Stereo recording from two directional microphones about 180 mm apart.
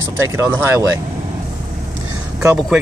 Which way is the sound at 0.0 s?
15° right (ahead or behind).